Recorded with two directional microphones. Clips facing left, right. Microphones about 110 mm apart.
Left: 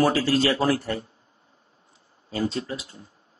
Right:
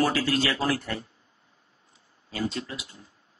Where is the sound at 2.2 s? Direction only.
35° left (ahead or behind).